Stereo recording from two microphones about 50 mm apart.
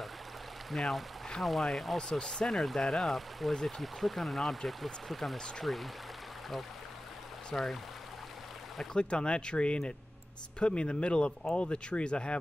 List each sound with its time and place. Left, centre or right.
0.7 s speech: centre
2.0 s speech: centre
2.5 s speech: centre
7.5 s speech: centre
8.9 s speech: centre